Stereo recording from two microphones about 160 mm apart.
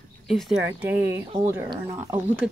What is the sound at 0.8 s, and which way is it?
Speech, 10° right (ahead or behind).